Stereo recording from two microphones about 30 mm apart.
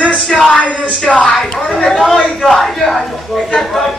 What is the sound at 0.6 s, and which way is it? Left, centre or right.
Speech, left.